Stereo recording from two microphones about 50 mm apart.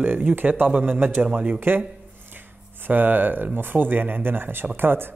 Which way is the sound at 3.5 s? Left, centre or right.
Right.